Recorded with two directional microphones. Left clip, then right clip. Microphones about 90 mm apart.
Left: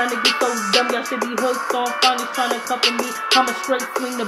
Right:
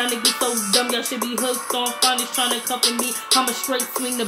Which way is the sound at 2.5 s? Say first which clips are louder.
Left 2 dB; 35° left (ahead or behind).